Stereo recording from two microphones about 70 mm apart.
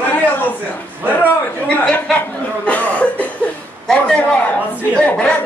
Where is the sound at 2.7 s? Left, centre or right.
Left.